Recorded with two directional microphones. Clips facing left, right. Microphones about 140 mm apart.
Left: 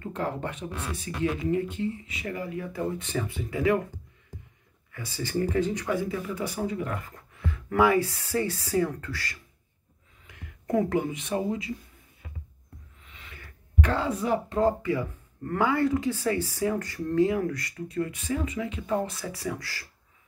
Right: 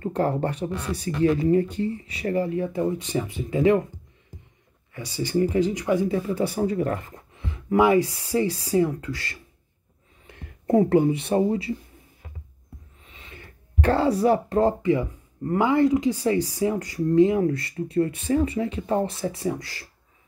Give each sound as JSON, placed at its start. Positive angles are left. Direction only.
{"t": 0.0, "sound": "speech", "side_deg": -35}
{"t": 3.0, "sound": "speech", "side_deg": -15}
{"t": 4.9, "sound": "speech", "side_deg": -15}
{"t": 6.1, "sound": "speech", "side_deg": -35}
{"t": 7.2, "sound": "speech", "side_deg": -20}
{"t": 13.0, "sound": "a sound", "side_deg": -25}
{"t": 14.7, "sound": "speech", "side_deg": -20}